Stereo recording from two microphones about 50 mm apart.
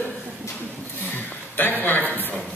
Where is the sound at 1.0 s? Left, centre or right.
Left.